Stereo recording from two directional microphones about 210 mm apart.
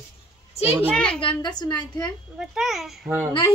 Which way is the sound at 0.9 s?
5° left (ahead or behind).